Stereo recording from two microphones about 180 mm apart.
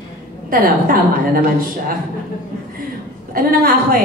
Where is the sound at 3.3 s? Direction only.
50° right (ahead or behind).